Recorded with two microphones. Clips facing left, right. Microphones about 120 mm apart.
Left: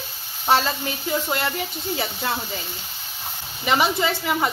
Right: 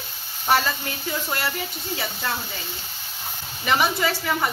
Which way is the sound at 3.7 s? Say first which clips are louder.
Left 1 dB; 20° left (ahead or behind).